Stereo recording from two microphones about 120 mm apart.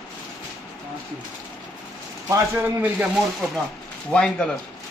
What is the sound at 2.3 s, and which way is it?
Speech, 15° right (ahead or behind).